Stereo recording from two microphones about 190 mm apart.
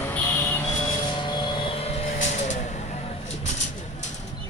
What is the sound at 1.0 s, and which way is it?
Vehicle, 25° left (ahead or behind).